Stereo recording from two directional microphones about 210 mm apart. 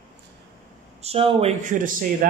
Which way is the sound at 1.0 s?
25° right (ahead or behind).